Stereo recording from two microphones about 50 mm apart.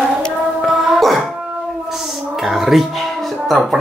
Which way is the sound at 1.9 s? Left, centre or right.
Centre.